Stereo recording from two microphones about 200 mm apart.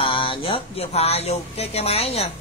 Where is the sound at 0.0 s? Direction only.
25° left (ahead or behind).